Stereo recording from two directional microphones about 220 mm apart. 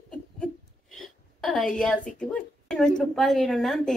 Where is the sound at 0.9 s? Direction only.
Centre (ahead or behind).